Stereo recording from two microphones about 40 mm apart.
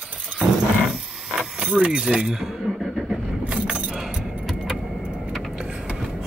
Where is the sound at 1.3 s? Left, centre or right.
Right.